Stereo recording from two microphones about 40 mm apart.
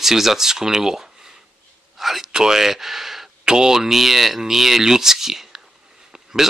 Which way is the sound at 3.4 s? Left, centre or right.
Centre.